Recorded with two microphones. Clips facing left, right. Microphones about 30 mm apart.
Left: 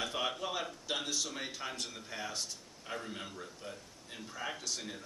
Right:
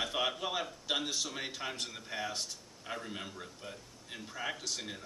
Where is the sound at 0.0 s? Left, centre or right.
Centre.